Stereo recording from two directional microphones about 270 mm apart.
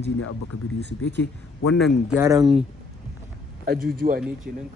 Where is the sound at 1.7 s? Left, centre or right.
Centre.